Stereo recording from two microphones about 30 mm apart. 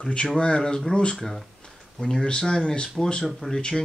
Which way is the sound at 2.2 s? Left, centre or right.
Left.